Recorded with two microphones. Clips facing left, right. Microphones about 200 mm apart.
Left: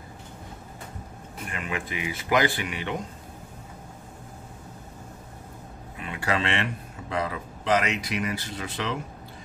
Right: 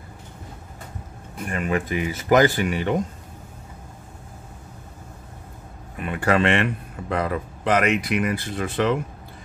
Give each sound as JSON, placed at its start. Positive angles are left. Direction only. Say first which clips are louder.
{"t": 1.5, "sound": "a man's voice", "louder": "right 9 dB", "side_deg": -45}
{"t": 5.9, "sound": "a man's voice", "louder": "right 7 dB", "side_deg": -50}